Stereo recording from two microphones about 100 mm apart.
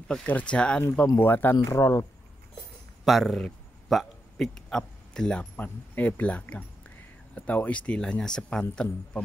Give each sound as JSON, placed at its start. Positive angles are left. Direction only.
{"t": 0.1, "sound": "speech", "side_deg": 10}
{"t": 1.0, "sound": "speech", "side_deg": 25}
{"t": 1.6, "sound": "speech", "side_deg": 30}
{"t": 3.1, "sound": "a man's voice", "side_deg": 0}